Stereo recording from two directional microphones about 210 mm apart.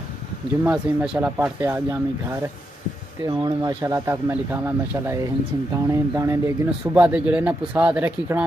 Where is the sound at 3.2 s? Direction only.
20° right (ahead or behind).